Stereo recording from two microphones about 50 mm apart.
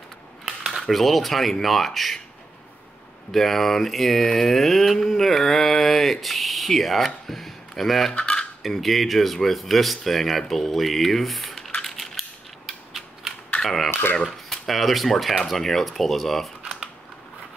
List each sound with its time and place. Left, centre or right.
0.7 s mantra: centre
3.3 s mantra: centre
7.2 s a sound: centre
8.1 s cutlery: centre
8.6 s mantra: centre
11.8 s a sound: centre
13.6 s cutlery: centre
14.1 s mantra: centre